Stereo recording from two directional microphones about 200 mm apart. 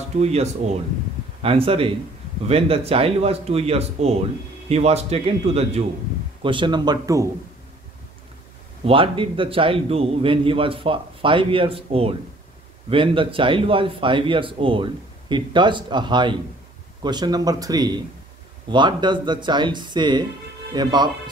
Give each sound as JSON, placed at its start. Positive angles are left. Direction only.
{"t": 0.2, "sound": "a man's voice", "side_deg": -30}
{"t": 8.8, "sound": "speech", "side_deg": -25}